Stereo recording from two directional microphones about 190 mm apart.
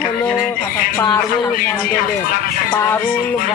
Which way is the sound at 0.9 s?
15° left (ahead or behind).